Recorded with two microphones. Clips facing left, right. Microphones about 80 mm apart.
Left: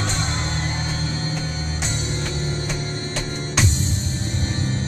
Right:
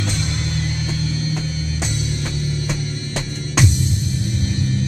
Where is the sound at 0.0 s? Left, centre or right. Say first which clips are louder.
Right 1 dB; left.